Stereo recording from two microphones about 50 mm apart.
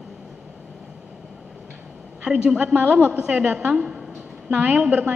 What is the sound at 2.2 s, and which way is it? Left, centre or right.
Speech, right.